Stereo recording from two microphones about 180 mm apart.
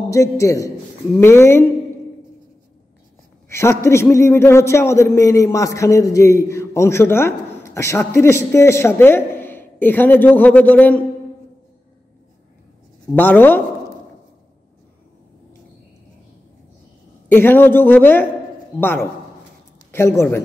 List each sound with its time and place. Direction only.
0.1 s a man's voice: 20° left (ahead or behind)
3.4 s a man's voice: 15° left (ahead or behind)
13.1 s a man's voice: 10° left (ahead or behind)
17.3 s a man's voice: 10° left (ahead or behind)